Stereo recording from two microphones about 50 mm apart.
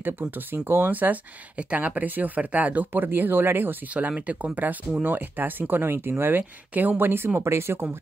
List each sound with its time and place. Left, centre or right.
0.5 s speech: right
3.9 s speech: right
7.3 s speech: right